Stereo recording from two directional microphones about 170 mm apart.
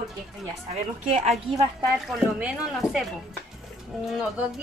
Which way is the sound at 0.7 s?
40° right (ahead or behind).